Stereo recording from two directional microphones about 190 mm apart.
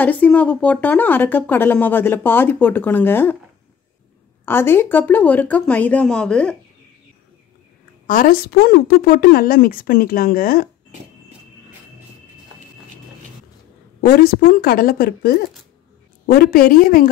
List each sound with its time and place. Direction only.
0.0 s a woman's voice: 10° left (ahead or behind)
4.5 s a woman's voice: 10° left (ahead or behind)
8.1 s speech: 50° left (ahead or behind)
14.0 s speech: 50° left (ahead or behind)